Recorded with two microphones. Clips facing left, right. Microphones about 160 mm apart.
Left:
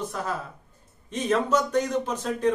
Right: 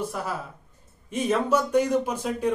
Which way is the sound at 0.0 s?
10° right (ahead or behind).